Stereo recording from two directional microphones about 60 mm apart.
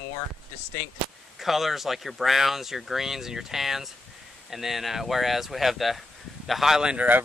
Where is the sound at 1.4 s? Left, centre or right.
Centre.